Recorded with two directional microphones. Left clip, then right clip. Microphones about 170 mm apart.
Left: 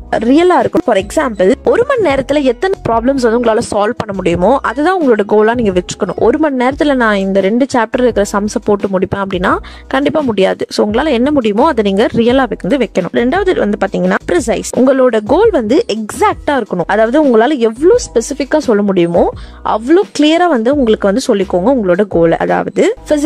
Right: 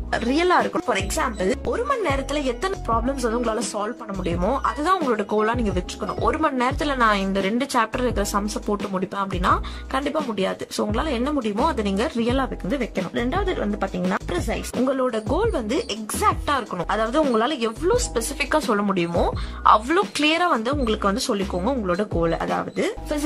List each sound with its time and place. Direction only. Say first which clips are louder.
0.1 s speech: left 10 dB; 45° left (ahead or behind); by 23.1 s 60° left (ahead or behind)